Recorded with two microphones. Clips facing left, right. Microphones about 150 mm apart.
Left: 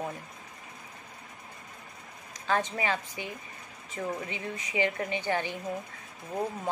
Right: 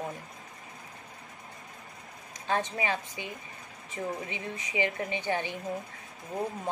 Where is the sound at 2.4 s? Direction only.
20° right (ahead or behind).